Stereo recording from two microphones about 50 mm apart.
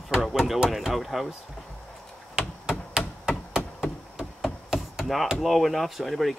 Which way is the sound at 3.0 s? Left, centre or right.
Centre.